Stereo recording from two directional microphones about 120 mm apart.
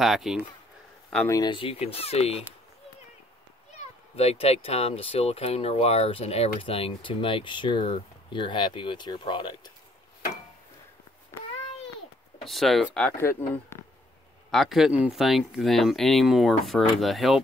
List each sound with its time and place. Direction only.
0.0 s speech: centre (ahead or behind)
1.4 s speech: 45° left (ahead or behind)
3.7 s speech: 60° left (ahead or behind); by 9.6 s 40° left (ahead or behind)
12.4 s speech: centre (ahead or behind)
14.5 s speech: centre (ahead or behind)